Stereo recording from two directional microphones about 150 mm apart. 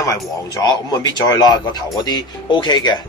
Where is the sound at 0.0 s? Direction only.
25° left (ahead or behind).